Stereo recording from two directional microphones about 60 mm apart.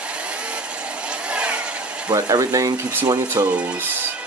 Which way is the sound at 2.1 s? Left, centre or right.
Right.